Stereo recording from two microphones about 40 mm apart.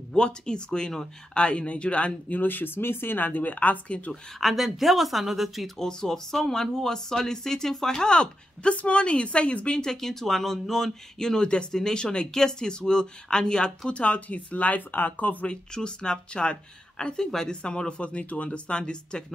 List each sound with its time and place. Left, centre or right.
0.1 s speech: left
2.3 s speech: left
3.3 s speech: left
4.4 s a woman's voice: centre
5.8 s speech: centre; by 9.8 s left
9.8 s speech: centre; by 15.3 s left
15.4 s speech: left